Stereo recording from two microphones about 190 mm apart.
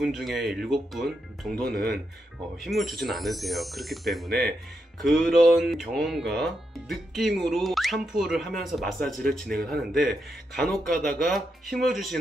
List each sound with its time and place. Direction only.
0.0 s speech: centre (ahead or behind)
1.7 s speech: 55° right (ahead or behind)
2.6 s speech: centre (ahead or behind)